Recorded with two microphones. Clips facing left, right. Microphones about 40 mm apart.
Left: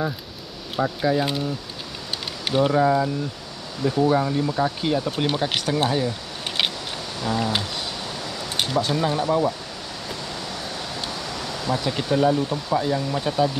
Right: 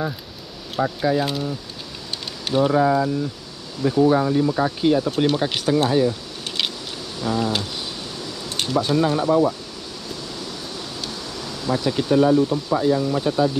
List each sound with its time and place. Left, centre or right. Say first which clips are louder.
0.7 s speech: right 1 dB; centre
2.7 s speech: right 1 dB; centre
5.1 s speech: right 3 dB; centre
7.2 s speech: right 2 dB; centre
8.8 s speech: right 3 dB; centre
11.7 s speech: right 4 dB; centre